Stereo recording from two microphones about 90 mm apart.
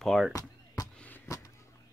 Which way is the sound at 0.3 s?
40° left (ahead or behind).